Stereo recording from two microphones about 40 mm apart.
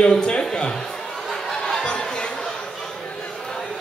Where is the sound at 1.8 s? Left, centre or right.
Left.